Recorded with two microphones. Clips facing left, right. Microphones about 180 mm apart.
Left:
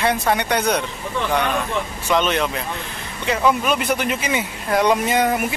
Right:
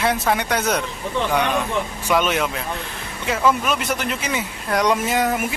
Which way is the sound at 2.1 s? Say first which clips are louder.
Left 1 dB; 5° right (ahead or behind).